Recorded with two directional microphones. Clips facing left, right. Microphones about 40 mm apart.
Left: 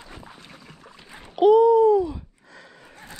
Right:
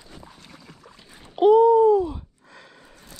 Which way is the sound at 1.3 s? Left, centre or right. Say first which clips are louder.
Even; left.